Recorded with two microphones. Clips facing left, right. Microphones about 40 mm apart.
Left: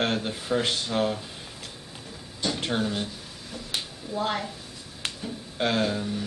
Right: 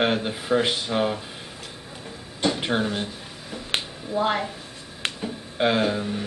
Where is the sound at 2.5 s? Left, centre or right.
Centre.